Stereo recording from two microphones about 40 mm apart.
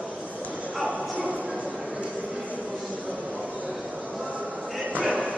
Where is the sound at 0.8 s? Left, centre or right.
Right.